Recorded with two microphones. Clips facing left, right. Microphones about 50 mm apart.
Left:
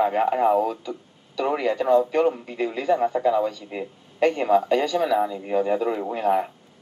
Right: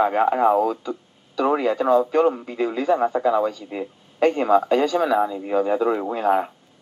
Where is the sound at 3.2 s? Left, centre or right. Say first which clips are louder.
Right 1 dB; right.